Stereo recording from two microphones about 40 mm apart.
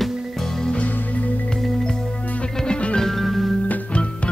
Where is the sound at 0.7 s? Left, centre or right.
Left.